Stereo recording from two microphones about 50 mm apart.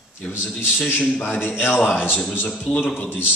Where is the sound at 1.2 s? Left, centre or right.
Left.